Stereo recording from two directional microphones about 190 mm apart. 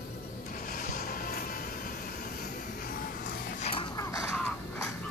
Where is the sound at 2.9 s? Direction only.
50° left (ahead or behind).